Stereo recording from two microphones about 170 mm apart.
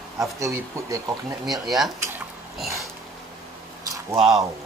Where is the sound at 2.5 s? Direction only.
Centre (ahead or behind).